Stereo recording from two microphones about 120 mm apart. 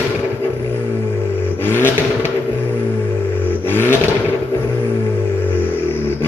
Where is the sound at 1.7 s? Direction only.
20° left (ahead or behind).